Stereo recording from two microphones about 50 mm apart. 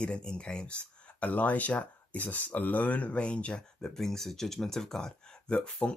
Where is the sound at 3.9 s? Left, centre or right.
Centre.